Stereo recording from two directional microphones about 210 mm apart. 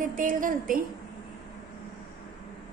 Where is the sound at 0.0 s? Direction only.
40° right (ahead or behind).